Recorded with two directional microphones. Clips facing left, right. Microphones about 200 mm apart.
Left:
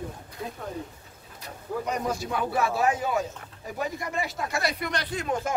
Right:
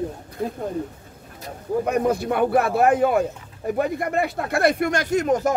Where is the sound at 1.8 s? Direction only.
55° right (ahead or behind).